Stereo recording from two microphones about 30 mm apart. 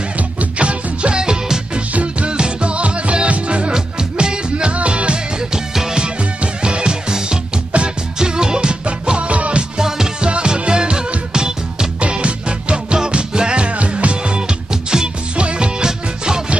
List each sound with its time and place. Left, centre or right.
0.4 s music: right
1.1 s music: right
2.7 s music: right
4.7 s music: right
5.5 s music: right
6.0 s music: right
9.8 s music: centre
10.2 s music: right
12.0 s music: right
13.6 s music: right
14.7 s music: right
15.3 s music: right